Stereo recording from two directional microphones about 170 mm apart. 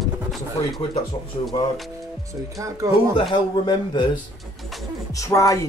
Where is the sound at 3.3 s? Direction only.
25° left (ahead or behind).